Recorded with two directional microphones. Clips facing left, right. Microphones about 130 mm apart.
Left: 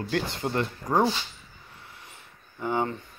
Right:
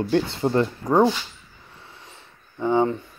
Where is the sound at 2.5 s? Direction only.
20° right (ahead or behind).